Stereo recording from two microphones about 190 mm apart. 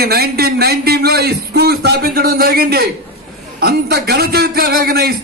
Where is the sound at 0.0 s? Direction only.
55° right (ahead or behind).